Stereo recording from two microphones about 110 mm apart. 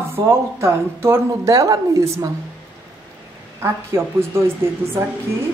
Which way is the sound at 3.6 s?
25° right (ahead or behind).